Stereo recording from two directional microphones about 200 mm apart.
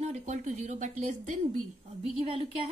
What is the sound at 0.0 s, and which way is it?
Speech, 35° right (ahead or behind).